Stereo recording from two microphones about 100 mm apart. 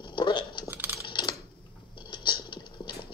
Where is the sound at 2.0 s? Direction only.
55° left (ahead or behind).